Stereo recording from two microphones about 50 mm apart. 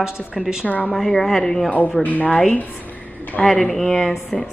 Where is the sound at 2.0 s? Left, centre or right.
Left.